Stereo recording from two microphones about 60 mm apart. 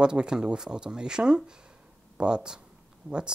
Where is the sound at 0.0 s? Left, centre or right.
Centre.